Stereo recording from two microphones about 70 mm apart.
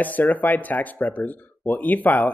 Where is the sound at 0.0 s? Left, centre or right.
Left.